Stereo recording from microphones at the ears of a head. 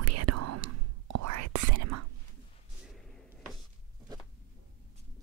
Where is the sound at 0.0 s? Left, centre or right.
Right.